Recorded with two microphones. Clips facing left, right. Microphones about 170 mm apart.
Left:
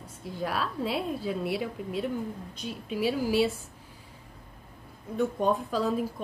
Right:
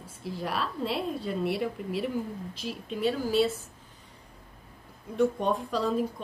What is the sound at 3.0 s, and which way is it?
Speech, 10° left (ahead or behind).